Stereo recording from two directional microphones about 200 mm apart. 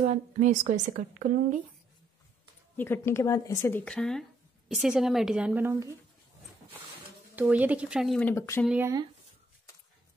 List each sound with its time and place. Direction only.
0.0 s a woman's voice: 35° right (ahead or behind)
2.8 s speech: 10° left (ahead or behind); by 5.9 s 15° right (ahead or behind)
7.3 s speech: 10° right (ahead or behind); by 8.6 s 10° left (ahead or behind)
8.6 s speech: 10° right (ahead or behind)